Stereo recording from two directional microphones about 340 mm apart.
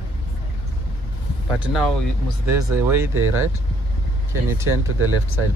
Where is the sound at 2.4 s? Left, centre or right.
Centre.